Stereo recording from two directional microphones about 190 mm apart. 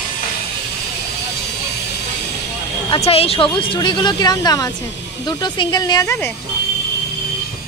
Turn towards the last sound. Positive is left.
turn(degrees=15)  # may be behind; listen again after turning